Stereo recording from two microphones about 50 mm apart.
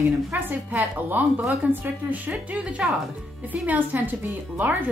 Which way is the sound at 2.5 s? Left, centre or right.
Right.